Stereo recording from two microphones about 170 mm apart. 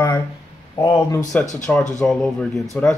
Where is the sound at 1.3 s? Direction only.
5° left (ahead or behind).